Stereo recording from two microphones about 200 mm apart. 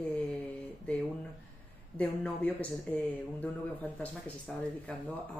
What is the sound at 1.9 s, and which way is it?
Speech, 5° left (ahead or behind).